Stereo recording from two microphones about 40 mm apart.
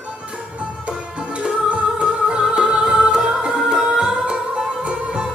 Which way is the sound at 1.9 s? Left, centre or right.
Right.